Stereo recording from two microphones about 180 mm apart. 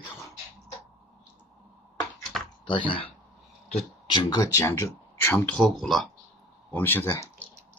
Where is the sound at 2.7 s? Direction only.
30° left (ahead or behind); by 6.1 s centre (ahead or behind).